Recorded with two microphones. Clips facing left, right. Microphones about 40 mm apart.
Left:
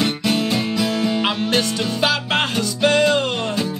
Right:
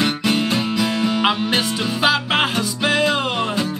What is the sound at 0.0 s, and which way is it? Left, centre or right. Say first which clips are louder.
Music: right 1 dB; centre.